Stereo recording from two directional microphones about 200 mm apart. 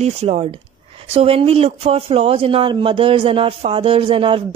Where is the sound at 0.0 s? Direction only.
30° right (ahead or behind).